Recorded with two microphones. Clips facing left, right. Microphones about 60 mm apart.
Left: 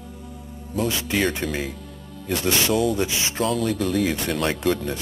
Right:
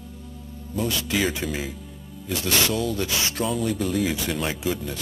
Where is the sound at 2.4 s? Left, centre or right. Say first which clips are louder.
Left 3 dB; left.